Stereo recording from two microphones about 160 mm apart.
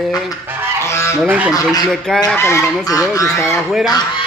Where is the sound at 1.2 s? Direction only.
10° right (ahead or behind).